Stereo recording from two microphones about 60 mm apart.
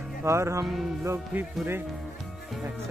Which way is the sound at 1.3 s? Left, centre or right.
Right.